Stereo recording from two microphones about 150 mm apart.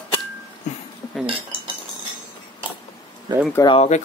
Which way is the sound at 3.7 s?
45° left (ahead or behind).